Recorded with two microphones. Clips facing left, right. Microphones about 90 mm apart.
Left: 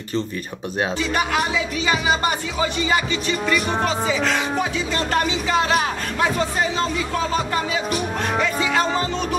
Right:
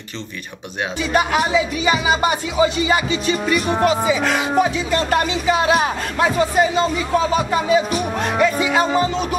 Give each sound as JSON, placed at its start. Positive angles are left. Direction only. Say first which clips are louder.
{"t": 1.1, "sound": "speech", "louder": "right 7 dB", "side_deg": -10}